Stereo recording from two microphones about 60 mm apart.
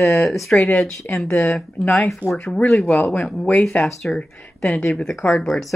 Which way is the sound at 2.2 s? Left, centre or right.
Right.